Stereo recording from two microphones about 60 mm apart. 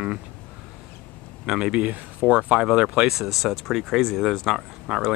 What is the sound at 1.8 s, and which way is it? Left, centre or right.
Speech, right.